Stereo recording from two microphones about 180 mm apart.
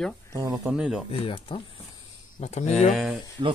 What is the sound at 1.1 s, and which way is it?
Speech, 30° left (ahead or behind).